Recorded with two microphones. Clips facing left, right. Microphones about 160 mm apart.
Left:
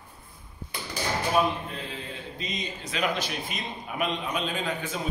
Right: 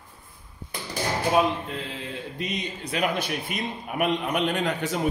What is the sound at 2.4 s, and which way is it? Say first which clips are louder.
A man's voice: right 4 dB; 65° right (ahead or behind).